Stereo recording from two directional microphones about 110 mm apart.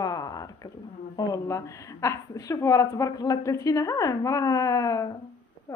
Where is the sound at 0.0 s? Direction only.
35° left (ahead or behind).